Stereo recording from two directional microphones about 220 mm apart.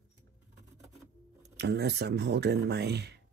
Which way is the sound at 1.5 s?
50° right (ahead or behind).